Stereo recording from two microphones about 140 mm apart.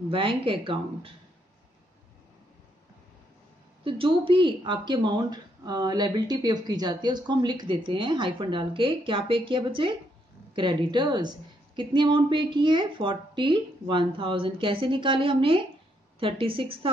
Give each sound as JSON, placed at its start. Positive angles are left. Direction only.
{"t": 0.1, "sound": "speech", "side_deg": -40}
{"t": 3.8, "sound": "speech", "side_deg": -40}